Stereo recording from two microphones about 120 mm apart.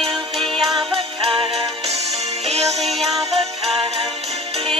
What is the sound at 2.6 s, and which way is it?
Music, centre (ahead or behind).